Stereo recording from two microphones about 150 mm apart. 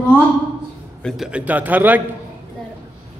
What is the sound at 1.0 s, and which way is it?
A man's voice, centre (ahead or behind).